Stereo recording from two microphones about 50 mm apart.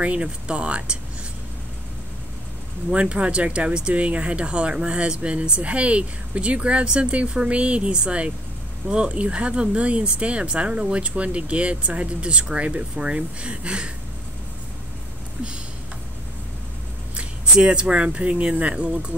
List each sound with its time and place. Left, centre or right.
0.0 s speech: right
2.9 s speech: right
17.1 s speech: centre